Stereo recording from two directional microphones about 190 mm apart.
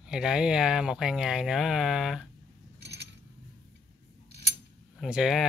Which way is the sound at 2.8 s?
60° right (ahead or behind).